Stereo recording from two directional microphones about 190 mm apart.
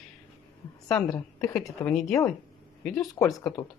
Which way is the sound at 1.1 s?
15° left (ahead or behind).